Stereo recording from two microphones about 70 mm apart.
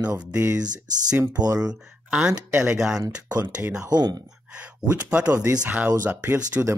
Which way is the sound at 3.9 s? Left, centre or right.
Right.